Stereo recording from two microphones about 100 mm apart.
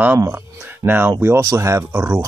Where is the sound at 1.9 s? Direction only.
20° right (ahead or behind).